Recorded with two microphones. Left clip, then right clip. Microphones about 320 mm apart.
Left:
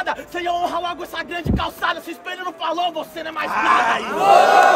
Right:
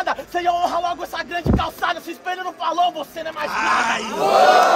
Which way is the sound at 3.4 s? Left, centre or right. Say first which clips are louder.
Left 3 dB; left.